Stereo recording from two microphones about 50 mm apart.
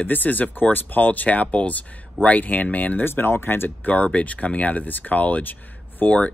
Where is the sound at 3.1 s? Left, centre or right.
Left.